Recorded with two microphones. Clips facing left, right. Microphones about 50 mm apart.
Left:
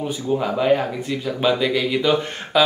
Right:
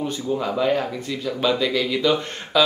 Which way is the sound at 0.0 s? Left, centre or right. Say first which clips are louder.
Left 2 dB; centre.